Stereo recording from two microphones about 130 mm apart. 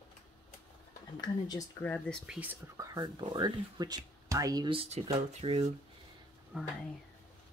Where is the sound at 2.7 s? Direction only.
30° right (ahead or behind).